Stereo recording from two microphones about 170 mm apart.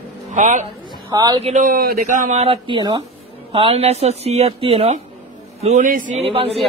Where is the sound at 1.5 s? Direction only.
55° right (ahead or behind).